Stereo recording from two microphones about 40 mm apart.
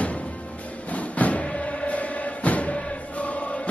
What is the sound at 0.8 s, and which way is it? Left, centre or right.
Music, left.